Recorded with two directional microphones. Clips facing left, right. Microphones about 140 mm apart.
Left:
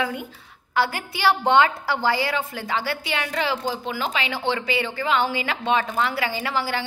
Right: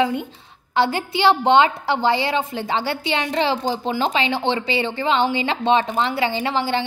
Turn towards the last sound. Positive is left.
turn(degrees=-25)  # may be behind; listen again after turning